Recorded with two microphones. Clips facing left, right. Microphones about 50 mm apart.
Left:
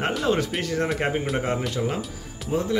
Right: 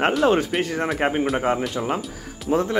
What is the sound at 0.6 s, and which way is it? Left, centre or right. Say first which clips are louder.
Speech: right 2 dB; right.